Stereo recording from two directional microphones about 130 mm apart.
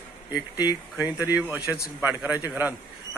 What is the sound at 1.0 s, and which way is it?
A man's voice, 10° right (ahead or behind).